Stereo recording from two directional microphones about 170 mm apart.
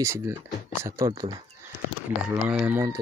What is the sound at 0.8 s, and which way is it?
Speech, 20° right (ahead or behind).